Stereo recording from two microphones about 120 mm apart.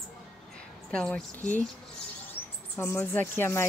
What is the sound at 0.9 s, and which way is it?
Speech, 5° left (ahead or behind).